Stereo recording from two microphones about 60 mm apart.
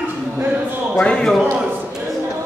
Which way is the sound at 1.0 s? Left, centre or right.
Centre.